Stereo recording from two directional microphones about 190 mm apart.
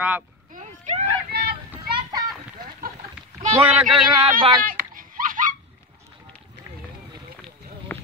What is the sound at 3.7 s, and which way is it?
Speech, centre (ahead or behind).